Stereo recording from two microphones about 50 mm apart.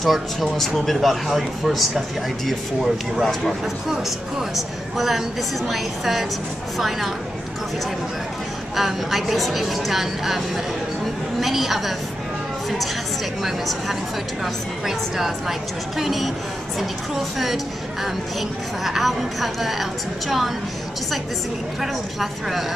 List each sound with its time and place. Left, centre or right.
0.0 s speech: centre
8.7 s speech: centre
18.9 s speech: centre
22.2 s speech: centre